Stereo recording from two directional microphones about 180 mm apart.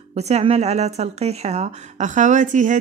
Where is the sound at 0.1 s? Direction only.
35° right (ahead or behind).